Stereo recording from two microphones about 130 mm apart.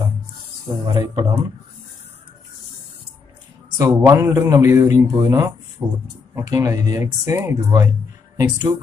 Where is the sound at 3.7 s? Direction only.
25° right (ahead or behind).